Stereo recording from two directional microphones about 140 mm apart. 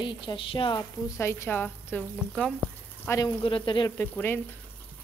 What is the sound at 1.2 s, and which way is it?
A woman's voice, 15° left (ahead or behind).